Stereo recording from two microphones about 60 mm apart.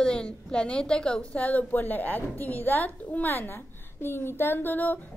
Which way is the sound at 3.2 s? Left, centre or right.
Left.